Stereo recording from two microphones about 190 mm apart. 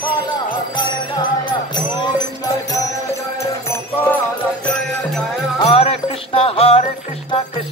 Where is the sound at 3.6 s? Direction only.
15° left (ahead or behind).